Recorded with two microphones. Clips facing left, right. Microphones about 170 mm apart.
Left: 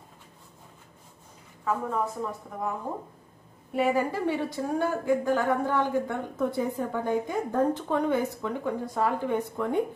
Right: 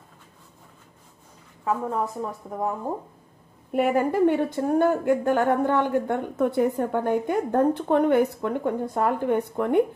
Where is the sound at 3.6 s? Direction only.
55° right (ahead or behind).